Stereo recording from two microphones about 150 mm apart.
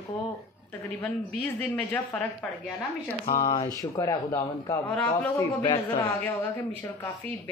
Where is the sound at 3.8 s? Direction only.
20° left (ahead or behind).